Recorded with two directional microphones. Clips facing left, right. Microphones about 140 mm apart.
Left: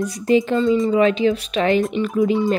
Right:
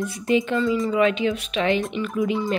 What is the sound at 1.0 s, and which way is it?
Speech, 35° left (ahead or behind).